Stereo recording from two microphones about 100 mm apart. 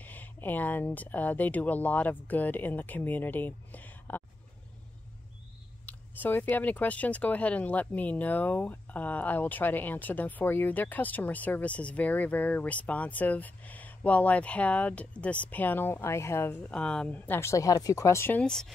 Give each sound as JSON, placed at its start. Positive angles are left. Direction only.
{"t": 0.0, "sound": "speech", "side_deg": 15}
{"t": 5.9, "sound": "speech", "side_deg": 20}
{"t": 16.7, "sound": "speech", "side_deg": 10}
{"t": 17.3, "sound": "speech", "side_deg": 30}
{"t": 18.4, "sound": "speech", "side_deg": 5}